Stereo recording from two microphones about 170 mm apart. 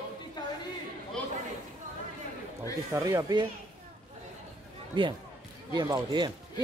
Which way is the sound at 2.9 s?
20° right (ahead or behind).